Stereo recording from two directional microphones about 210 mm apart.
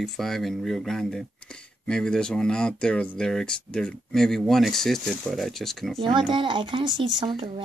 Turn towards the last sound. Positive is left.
turn(degrees=-25)  # may be behind; listen again after turning